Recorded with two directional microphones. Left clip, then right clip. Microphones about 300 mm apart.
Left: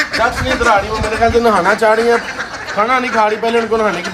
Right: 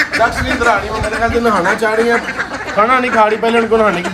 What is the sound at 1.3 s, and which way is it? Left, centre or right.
Speech, left.